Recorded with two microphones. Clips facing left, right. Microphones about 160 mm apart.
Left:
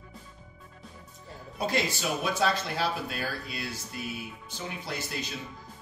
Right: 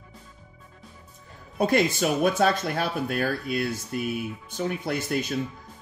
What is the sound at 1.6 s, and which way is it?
Speech, 55° right (ahead or behind).